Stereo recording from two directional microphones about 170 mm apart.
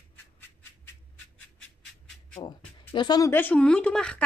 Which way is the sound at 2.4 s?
30° left (ahead or behind).